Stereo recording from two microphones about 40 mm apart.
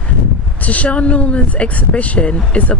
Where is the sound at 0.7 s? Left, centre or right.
Left.